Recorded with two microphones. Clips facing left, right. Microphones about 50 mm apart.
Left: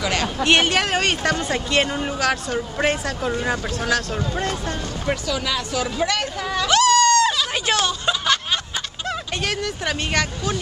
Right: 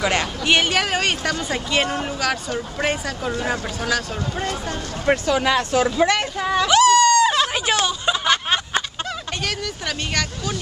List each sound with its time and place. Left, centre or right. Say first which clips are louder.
0.0 s speech: right 2 dB; right
0.4 s speech: left 3 dB; centre
5.0 s speech: right 7 dB; right
6.4 s a sound: right 3 dB; centre
9.4 s speech: left 3 dB; centre